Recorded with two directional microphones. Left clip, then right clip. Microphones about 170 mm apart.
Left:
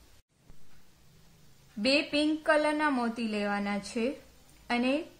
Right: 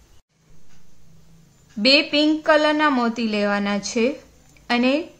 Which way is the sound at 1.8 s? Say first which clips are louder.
Right 11 dB; 25° right (ahead or behind).